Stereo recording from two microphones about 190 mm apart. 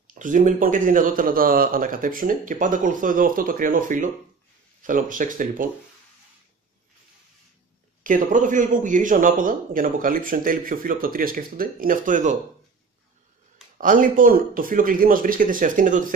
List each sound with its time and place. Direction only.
0.1 s a man's voice: 45° right (ahead or behind)
8.0 s a man's voice: 45° right (ahead or behind)
13.7 s a man's voice: 45° right (ahead or behind)